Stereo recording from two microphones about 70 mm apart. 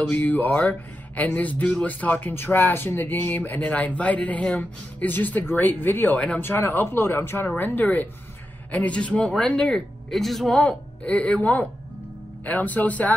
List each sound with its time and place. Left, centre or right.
0.1 s speech: left
6.1 s speech: centre
6.4 s speech: left; by 9.8 s centre
10.1 s a man's voice: centre
10.5 s speech: centre